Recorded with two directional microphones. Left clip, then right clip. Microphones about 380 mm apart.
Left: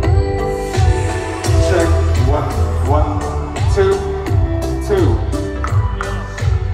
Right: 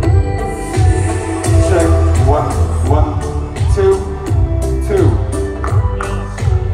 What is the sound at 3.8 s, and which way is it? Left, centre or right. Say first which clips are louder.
Music: right 2 dB; left.